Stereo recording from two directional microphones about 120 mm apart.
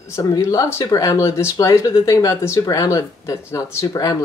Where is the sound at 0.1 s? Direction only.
25° left (ahead or behind).